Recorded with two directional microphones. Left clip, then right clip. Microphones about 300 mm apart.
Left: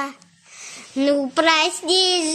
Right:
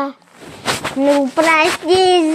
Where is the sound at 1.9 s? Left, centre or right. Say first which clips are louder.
Right 6 dB; centre.